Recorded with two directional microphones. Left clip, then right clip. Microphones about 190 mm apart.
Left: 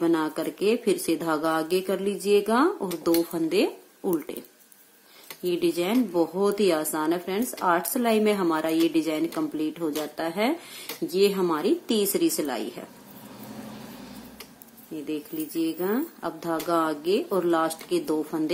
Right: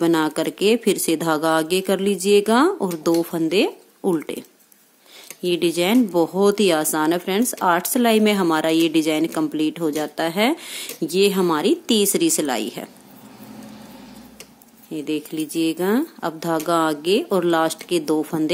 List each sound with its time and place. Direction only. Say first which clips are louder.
0.0 s speech: right 6 dB; 45° right (ahead or behind)
5.4 s speech: right 5 dB; 45° right (ahead or behind)
15.0 s speech: right 7 dB; 45° right (ahead or behind)